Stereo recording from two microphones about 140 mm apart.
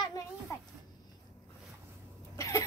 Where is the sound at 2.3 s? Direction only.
25° left (ahead or behind).